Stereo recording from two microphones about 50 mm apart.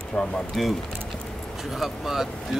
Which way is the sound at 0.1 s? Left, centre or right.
Centre.